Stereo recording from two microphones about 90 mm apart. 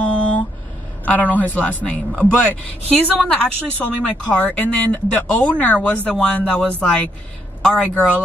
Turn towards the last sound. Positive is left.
turn(degrees=10)  # may be behind; listen again after turning